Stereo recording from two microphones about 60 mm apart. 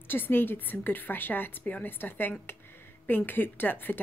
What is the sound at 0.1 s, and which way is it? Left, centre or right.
A woman's voice, left.